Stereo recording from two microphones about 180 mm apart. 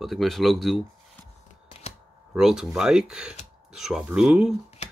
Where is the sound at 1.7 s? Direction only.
35° left (ahead or behind).